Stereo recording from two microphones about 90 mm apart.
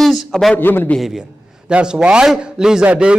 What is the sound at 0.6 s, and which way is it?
Speech, 20° left (ahead or behind).